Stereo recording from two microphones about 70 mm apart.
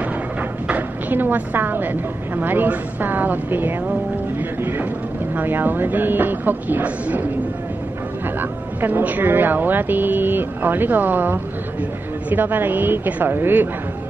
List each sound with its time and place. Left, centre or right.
0.7 s a woman's voice: right
4.4 s a sound: right
5.3 s a woman's voice: right
8.4 s a woman's voice: right